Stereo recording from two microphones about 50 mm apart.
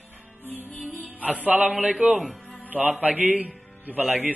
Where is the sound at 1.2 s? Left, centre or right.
Right.